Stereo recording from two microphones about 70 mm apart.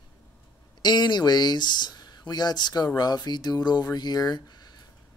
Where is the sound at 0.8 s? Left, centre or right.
Left.